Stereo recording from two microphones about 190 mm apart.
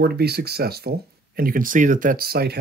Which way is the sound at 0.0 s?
55° right (ahead or behind).